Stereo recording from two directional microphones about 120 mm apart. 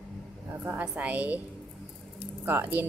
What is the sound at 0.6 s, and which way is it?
Speech, 10° right (ahead or behind).